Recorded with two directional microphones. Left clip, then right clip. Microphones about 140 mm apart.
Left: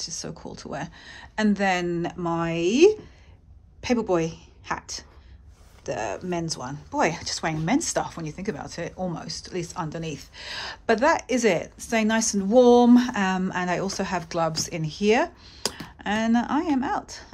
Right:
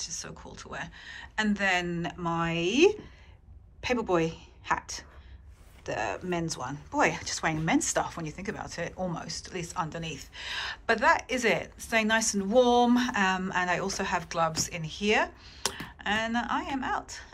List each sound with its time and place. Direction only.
0.0 s a woman's voice: 45° left (ahead or behind)